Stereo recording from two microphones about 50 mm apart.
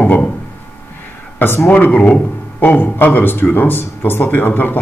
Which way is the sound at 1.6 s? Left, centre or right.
Left.